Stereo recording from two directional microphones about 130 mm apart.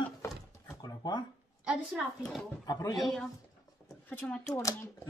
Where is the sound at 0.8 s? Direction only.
30° left (ahead or behind).